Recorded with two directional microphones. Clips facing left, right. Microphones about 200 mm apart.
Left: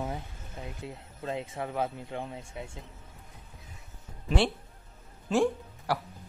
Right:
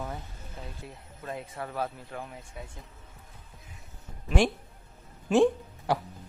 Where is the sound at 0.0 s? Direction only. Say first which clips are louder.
Left 2 dB; 15° left (ahead or behind).